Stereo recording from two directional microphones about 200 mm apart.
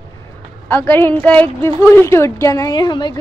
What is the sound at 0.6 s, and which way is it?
A woman's voice, 10° left (ahead or behind).